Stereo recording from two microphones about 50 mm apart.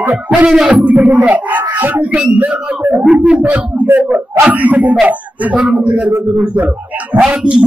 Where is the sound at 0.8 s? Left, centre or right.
Right.